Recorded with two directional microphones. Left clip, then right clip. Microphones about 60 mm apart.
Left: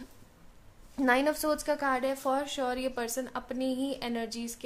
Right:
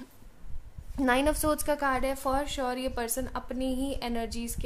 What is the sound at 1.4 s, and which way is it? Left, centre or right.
A woman's voice, right.